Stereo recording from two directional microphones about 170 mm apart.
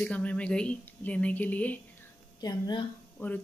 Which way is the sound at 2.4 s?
25° left (ahead or behind).